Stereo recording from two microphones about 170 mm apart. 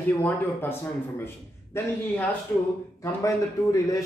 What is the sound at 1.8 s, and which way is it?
Speech, 15° left (ahead or behind).